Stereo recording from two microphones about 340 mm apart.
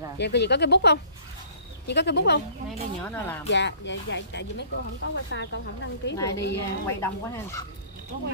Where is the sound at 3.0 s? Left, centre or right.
Centre.